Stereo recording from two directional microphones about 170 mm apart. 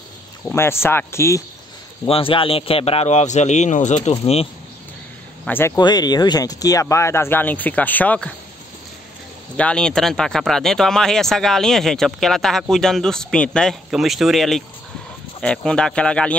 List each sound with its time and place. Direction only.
0.5 s speech: 15° left (ahead or behind)
2.0 s a man's voice: 30° left (ahead or behind)
5.4 s speech: 15° left (ahead or behind)
5.8 s speech: 25° left (ahead or behind); by 8.4 s 5° left (ahead or behind)
9.6 s speech: 5° left (ahead or behind)